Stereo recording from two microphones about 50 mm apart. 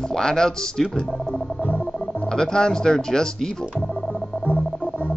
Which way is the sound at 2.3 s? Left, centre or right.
Centre.